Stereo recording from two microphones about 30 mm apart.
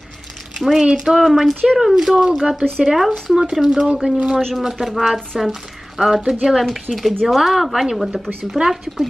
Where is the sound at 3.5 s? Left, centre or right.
Centre.